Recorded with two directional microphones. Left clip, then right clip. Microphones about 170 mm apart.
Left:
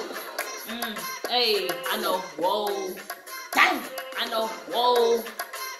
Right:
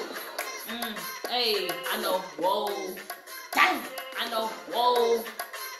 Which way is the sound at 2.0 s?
10° left (ahead or behind).